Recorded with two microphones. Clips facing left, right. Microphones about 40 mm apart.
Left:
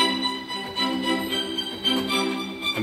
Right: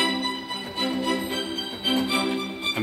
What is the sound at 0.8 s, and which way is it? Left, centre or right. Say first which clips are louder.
Organ: left 1 dB; left.